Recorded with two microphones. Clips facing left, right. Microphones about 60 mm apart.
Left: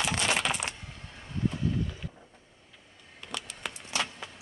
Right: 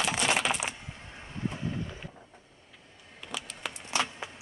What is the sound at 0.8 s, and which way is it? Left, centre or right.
Vehicle, right.